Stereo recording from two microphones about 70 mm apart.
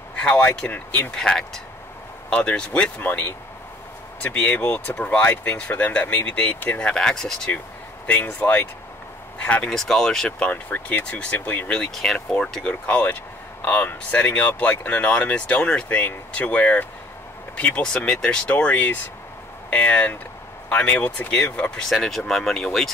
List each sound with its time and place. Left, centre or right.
0.2 s speech: centre
1.1 s speech: centre
3.0 s speech: left
6.8 s speech: centre
8.1 s speech: left
10.7 s speech: left
11.7 s speech: centre
12.8 s speech: left; by 22.8 s centre